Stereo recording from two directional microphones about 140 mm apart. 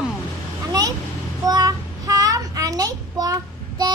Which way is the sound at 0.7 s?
25° right (ahead or behind).